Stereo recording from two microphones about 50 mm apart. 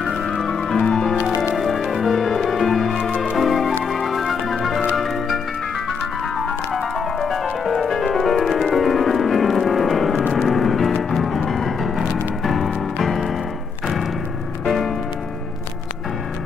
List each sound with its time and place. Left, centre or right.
0.0 s music: centre
1.6 s music: centre
14.6 s music: centre